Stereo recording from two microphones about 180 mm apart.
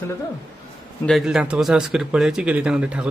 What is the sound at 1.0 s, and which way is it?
Speech, centre (ahead or behind).